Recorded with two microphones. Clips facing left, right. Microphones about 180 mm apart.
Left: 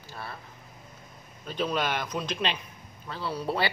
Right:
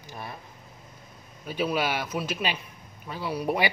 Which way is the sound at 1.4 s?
10° right (ahead or behind).